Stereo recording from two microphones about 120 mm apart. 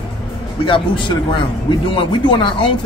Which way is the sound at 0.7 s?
45° left (ahead or behind).